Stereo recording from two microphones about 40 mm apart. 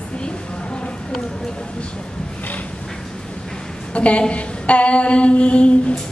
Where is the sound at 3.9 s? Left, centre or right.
Left.